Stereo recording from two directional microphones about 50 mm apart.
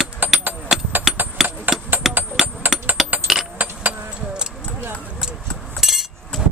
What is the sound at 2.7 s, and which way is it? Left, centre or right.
Coin, centre.